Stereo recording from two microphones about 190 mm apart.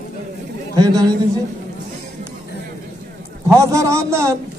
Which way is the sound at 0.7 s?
20° right (ahead or behind).